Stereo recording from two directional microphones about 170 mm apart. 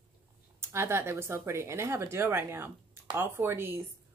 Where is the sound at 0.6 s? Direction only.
15° right (ahead or behind).